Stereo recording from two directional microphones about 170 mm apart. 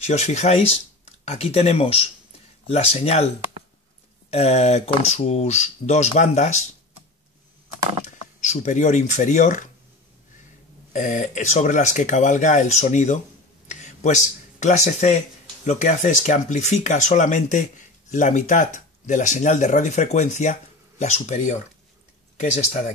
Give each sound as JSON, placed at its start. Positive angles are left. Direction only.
{"t": 0.0, "sound": "speech", "side_deg": 40}
{"t": 4.3, "sound": "speech", "side_deg": 40}
{"t": 8.0, "sound": "speech", "side_deg": 45}
{"t": 10.9, "sound": "speech", "side_deg": 45}
{"t": 13.7, "sound": "a sound", "side_deg": 45}
{"t": 15.6, "sound": "speech", "side_deg": 45}